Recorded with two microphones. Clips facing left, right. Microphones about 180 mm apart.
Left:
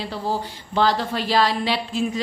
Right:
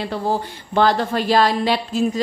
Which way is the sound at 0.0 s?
55° right (ahead or behind).